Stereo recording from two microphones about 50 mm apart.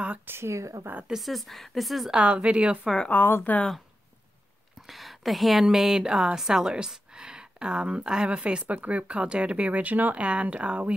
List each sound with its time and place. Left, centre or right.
0.3 s speech: right
1.2 s speech: centre
2.2 s speech: right
3.1 s speech: left
4.8 s speech: centre; by 10.9 s right